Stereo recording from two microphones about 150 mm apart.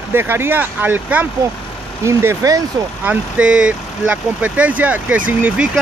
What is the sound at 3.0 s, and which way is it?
Speech, 10° right (ahead or behind).